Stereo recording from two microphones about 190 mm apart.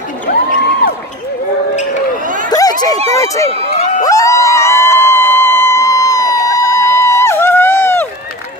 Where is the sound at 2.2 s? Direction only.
45° right (ahead or behind).